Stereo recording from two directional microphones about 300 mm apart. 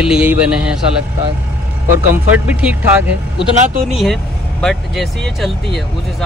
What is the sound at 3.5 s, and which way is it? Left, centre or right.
Speech, right.